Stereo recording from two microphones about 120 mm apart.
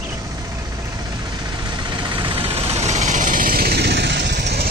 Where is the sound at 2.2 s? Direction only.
45° right (ahead or behind); by 3.5 s 90° right.